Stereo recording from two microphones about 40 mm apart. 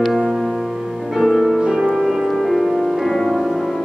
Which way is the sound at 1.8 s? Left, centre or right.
Centre.